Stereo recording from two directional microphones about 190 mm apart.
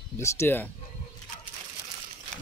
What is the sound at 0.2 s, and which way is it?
Speech, 10° left (ahead or behind).